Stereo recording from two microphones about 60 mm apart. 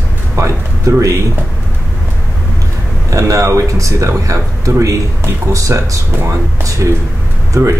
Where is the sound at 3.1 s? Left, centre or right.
Right.